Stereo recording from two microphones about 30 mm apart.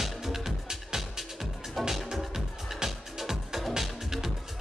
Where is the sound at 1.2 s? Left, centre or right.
Centre.